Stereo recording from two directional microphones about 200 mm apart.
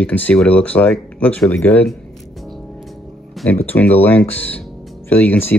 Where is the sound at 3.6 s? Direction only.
10° left (ahead or behind).